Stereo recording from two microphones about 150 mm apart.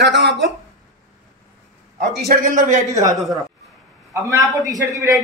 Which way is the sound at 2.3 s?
65° right (ahead or behind).